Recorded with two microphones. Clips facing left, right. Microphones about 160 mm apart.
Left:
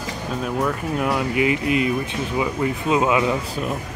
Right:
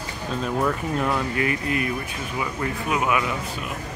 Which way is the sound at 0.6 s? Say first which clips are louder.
Left 1 dB; centre (ahead or behind).